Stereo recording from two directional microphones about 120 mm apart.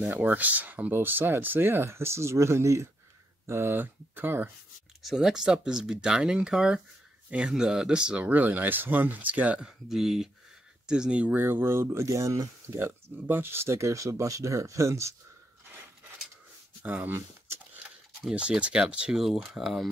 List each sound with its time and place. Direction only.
0.0 s speech: 15° right (ahead or behind)
5.0 s speech: 5° right (ahead or behind); by 15.1 s 25° right (ahead or behind)
16.8 s speech: 15° right (ahead or behind)